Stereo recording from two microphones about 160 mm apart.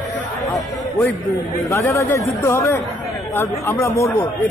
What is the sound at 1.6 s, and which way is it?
Speech, 15° left (ahead or behind).